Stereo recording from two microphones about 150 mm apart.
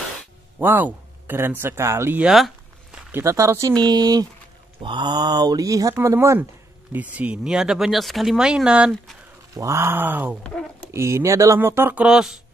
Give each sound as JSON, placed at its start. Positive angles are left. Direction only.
{"t": 0.6, "sound": "speech", "side_deg": -10}
{"t": 2.2, "sound": "a sound", "side_deg": 0}
{"t": 3.1, "sound": "speech", "side_deg": -15}
{"t": 7.2, "sound": "speech", "side_deg": -5}
{"t": 9.6, "sound": "speech", "side_deg": -20}
{"t": 10.4, "sound": "speech", "side_deg": 5}
{"t": 10.9, "sound": "speech", "side_deg": -20}